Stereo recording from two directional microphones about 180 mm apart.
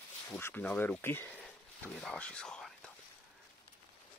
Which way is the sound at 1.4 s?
5° left (ahead or behind).